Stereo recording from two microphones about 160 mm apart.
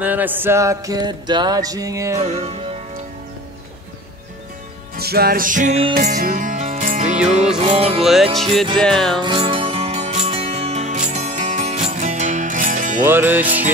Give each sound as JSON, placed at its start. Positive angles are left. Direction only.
{"t": 0.0, "sound": "music", "side_deg": -10}
{"t": 2.2, "sound": "music", "side_deg": -40}
{"t": 4.9, "sound": "music", "side_deg": -75}
{"t": 7.5, "sound": "music", "side_deg": -40}
{"t": 8.0, "sound": "music", "side_deg": 0}
{"t": 9.2, "sound": "music", "side_deg": -30}
{"t": 13.0, "sound": "music", "side_deg": -15}